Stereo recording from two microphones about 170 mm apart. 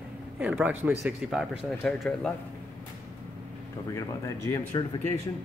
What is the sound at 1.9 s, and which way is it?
Speech, 5° left (ahead or behind).